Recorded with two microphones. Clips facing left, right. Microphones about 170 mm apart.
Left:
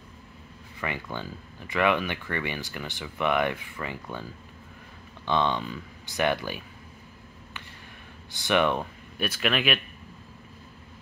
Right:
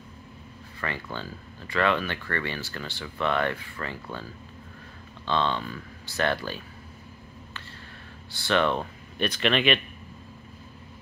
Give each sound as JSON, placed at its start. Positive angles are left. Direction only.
{"t": 0.7, "sound": "speech", "side_deg": 15}
{"t": 8.3, "sound": "speech", "side_deg": 15}